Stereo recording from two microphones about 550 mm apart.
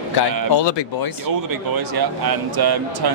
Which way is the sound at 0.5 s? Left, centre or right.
Left.